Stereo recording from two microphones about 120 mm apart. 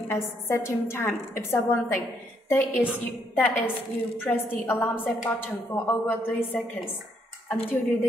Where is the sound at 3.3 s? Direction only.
15° left (ahead or behind).